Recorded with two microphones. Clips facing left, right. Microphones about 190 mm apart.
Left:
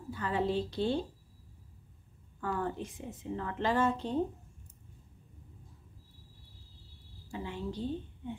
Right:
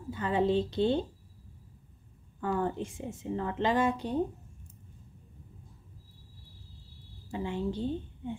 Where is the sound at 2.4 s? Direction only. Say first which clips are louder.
Right 4 dB; 20° right (ahead or behind).